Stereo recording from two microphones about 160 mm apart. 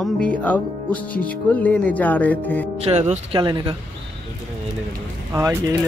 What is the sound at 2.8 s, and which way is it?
Speech, 40° right (ahead or behind).